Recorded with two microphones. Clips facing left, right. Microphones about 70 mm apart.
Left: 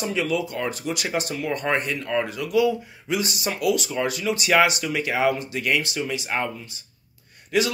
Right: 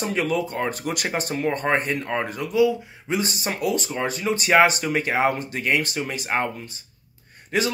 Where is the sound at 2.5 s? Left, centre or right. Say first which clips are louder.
Right 1 dB; right.